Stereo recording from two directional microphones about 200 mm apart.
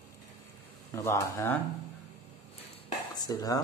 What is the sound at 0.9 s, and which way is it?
Speech, 15° left (ahead or behind).